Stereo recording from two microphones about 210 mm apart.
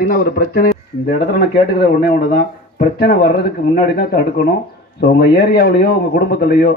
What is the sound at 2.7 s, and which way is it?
Speech, 45° left (ahead or behind).